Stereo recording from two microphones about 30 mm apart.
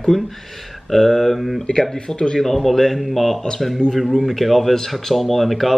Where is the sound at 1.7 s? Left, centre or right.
Centre.